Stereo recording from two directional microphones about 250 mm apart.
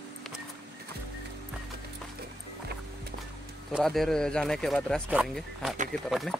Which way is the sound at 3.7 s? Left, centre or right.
Centre.